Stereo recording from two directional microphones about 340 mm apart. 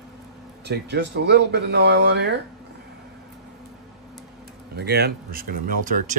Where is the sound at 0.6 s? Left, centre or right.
Right.